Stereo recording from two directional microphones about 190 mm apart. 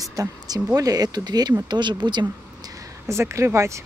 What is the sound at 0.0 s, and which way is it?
Speech, 20° right (ahead or behind).